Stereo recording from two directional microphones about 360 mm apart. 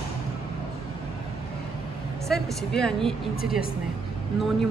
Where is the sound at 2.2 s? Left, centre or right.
Centre.